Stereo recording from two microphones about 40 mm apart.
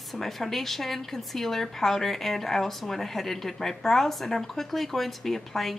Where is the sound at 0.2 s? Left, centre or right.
Centre.